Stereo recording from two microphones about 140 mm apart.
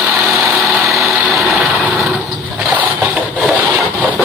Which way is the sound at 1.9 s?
Centre (ahead or behind).